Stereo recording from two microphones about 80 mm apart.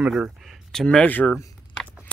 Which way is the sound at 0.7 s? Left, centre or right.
Centre.